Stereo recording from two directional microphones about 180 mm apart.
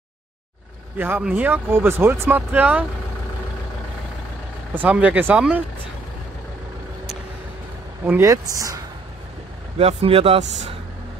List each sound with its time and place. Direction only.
0.9 s speech: 10° right (ahead or behind)
4.8 s speech: 10° right (ahead or behind)
8.0 s speech: 10° right (ahead or behind)
9.8 s speech: 35° right (ahead or behind)